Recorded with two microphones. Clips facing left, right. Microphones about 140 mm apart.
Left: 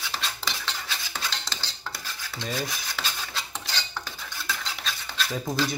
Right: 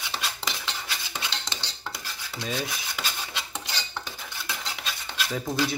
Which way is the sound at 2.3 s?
5° right (ahead or behind).